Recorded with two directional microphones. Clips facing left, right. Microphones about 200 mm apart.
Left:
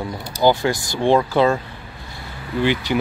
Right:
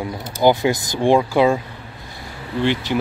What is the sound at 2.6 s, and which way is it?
Speech, 5° left (ahead or behind).